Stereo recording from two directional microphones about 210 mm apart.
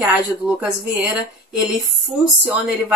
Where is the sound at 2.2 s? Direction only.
5° right (ahead or behind).